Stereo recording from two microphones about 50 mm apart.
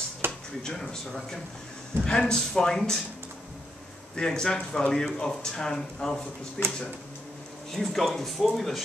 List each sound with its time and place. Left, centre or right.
0.2 s a sound: right
0.7 s speech: centre
2.0 s a man's voice: centre
4.1 s a man's voice: centre
6.6 s speech: left
7.7 s speech: centre